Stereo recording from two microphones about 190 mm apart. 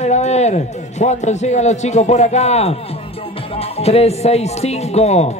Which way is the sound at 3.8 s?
35° left (ahead or behind).